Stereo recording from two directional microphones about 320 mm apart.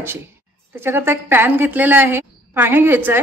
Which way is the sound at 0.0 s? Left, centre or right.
Centre.